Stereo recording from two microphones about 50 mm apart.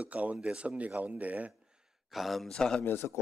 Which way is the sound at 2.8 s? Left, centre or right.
Left.